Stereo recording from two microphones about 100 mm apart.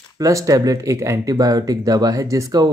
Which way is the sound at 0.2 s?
35° right (ahead or behind).